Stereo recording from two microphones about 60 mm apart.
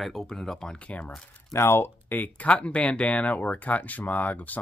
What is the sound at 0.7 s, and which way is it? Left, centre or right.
Speech, left.